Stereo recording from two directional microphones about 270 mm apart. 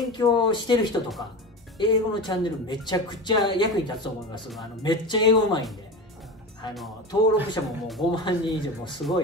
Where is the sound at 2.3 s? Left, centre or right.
Centre.